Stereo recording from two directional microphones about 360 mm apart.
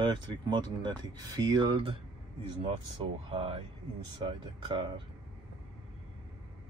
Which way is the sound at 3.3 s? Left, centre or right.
Centre.